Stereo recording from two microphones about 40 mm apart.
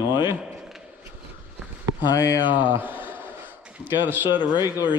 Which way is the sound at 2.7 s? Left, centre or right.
Right.